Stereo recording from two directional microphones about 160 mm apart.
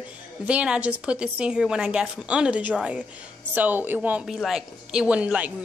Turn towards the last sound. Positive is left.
turn(degrees=-10)  # may be behind; listen again after turning